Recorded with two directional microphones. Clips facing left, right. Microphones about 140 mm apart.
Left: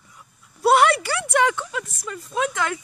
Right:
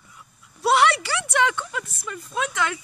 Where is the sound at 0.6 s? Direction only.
45° left (ahead or behind).